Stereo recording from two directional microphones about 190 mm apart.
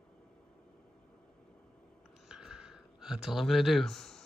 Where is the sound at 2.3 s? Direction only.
5° right (ahead or behind).